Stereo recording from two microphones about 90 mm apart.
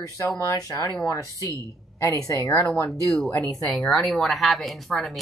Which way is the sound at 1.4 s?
40° right (ahead or behind).